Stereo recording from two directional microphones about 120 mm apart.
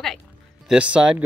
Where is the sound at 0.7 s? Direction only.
10° right (ahead or behind).